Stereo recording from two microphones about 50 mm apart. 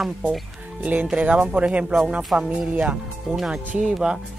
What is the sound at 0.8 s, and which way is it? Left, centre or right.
Speech, right.